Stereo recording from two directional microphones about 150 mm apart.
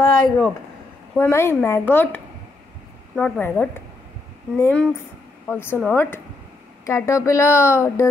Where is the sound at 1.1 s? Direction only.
15° left (ahead or behind).